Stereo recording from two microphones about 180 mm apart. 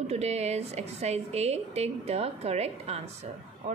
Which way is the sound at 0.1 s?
35° right (ahead or behind).